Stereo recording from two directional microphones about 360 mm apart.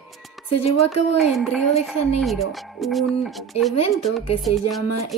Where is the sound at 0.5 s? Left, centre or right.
Left.